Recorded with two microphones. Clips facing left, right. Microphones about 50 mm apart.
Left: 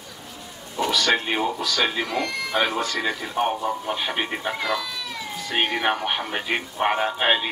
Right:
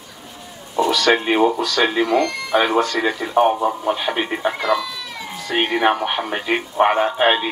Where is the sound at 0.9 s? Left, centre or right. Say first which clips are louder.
Right 5 dB; centre.